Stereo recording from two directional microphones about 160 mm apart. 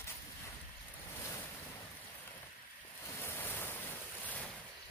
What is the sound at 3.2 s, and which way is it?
Waves, 15° left (ahead or behind).